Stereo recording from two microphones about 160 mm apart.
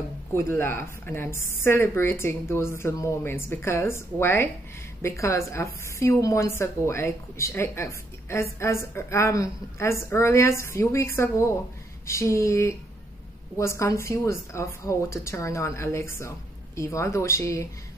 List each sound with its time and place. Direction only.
0.3 s a woman's voice: 15° left (ahead or behind)